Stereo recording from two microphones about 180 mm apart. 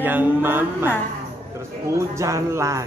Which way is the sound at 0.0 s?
10° right (ahead or behind).